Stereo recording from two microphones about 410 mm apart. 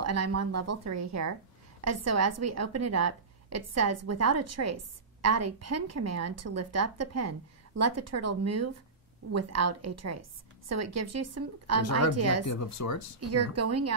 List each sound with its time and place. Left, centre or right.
0.0 s a woman's voice: right
12.4 s speech: left
13.2 s a woman's voice: right